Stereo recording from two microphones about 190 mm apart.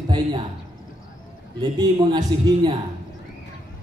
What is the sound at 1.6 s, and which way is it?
A man's voice, 20° right (ahead or behind).